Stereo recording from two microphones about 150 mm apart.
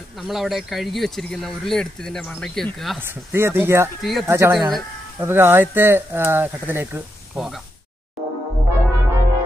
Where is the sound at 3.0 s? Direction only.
15° right (ahead or behind).